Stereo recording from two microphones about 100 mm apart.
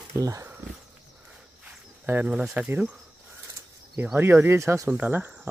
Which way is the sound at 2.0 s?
15° right (ahead or behind).